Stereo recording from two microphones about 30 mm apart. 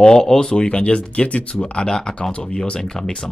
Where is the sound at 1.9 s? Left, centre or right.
Left.